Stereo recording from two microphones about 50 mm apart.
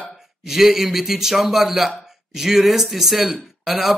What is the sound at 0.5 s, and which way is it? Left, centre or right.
Speech, centre.